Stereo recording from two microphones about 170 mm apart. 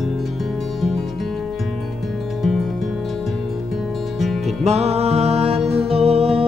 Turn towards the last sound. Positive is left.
turn(degrees=-35)  # may be behind; listen again after turning